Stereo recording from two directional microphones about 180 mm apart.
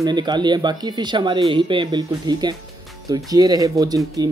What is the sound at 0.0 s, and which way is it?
Speech, 25° right (ahead or behind).